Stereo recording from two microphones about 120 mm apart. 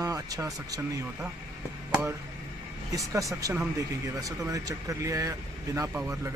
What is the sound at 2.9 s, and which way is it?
Speech, 25° right (ahead or behind).